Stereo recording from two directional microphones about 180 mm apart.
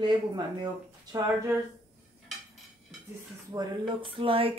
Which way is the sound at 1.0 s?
20° right (ahead or behind).